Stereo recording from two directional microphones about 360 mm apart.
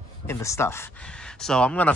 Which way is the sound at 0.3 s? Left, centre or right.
Centre.